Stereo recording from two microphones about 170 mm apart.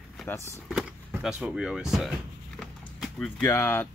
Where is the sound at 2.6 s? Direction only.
5° left (ahead or behind).